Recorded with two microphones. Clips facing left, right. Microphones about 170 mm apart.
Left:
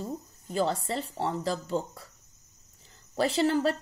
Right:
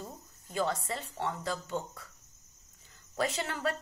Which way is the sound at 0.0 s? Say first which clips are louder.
Left 9 dB; 35° left (ahead or behind).